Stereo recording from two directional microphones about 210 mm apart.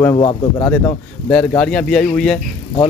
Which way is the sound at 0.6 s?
10° left (ahead or behind).